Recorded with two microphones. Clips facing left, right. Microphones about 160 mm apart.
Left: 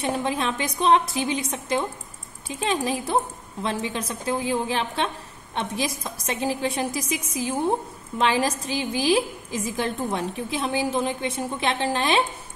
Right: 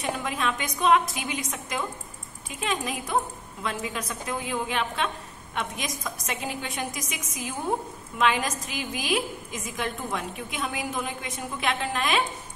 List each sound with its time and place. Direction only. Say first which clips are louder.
0.0 s a woman's voice: left 4 dB; 30° left (ahead or behind)